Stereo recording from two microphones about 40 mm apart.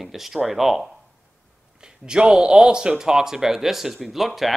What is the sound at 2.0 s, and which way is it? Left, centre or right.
Speech, right.